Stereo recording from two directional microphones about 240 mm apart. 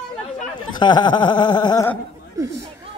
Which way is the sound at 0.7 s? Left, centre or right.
Centre.